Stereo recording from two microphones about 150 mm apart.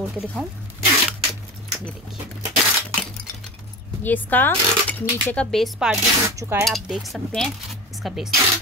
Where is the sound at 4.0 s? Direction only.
10° left (ahead or behind).